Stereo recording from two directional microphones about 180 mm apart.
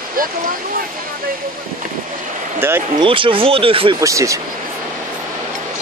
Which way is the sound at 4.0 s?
15° right (ahead or behind).